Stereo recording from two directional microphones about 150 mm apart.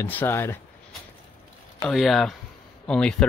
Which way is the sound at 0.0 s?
15° left (ahead or behind).